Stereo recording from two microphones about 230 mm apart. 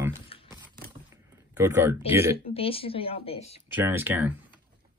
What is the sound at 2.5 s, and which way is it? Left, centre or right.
Speech, left.